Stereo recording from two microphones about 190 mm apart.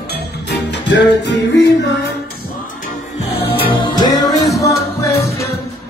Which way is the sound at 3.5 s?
25° left (ahead or behind).